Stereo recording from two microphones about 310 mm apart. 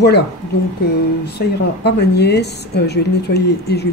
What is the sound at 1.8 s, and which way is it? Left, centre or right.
Speech, left.